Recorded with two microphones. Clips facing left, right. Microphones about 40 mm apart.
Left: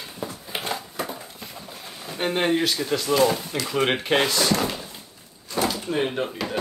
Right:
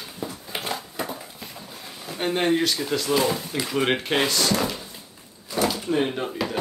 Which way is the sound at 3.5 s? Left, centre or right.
Centre.